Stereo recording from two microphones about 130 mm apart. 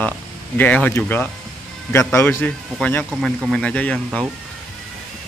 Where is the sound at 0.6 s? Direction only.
10° left (ahead or behind).